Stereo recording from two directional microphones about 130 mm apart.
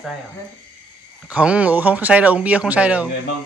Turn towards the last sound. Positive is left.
turn(degrees=-10)  # may be behind; listen again after turning